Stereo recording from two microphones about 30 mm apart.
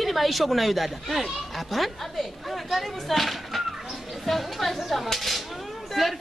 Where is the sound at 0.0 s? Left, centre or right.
Centre.